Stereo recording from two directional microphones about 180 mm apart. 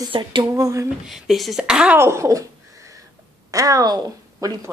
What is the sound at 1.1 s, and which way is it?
A woman's voice, centre (ahead or behind).